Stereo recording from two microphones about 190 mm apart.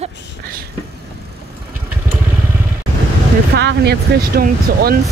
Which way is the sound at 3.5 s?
60° right (ahead or behind).